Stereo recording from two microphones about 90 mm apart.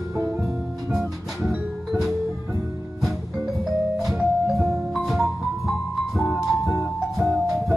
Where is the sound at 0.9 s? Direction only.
5° right (ahead or behind).